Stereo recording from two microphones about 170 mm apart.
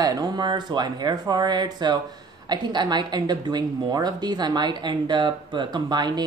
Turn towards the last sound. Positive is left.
turn(degrees=-25)  # may be behind; listen again after turning